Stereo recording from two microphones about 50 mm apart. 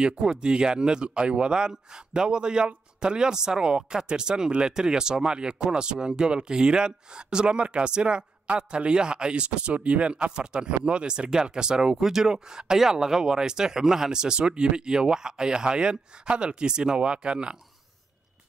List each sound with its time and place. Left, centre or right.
0.0 s speech: centre